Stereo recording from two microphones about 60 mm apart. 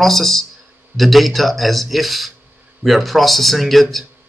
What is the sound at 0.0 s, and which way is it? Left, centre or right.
Speech, centre.